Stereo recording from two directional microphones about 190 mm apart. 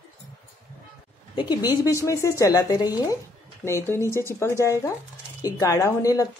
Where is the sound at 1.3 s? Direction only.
20° left (ahead or behind).